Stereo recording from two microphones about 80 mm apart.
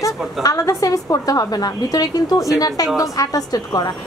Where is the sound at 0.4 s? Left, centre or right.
Left.